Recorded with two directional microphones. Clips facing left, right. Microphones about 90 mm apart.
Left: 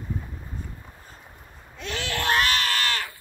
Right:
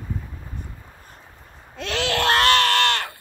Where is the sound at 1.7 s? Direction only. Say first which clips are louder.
Right 6 dB; 85° right; by 3.1 s 70° right (ahead or behind).